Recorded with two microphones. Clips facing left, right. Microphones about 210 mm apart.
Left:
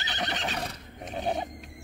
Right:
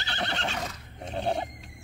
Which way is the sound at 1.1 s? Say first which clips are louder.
Right 1 dB; 15° left (ahead or behind).